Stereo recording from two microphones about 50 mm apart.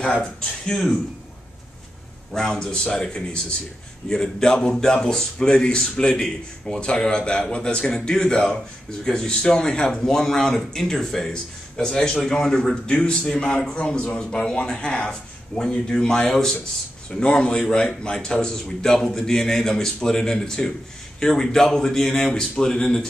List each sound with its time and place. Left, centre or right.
0.0 s speech: centre
2.3 s a man's voice: centre
17.2 s speech: centre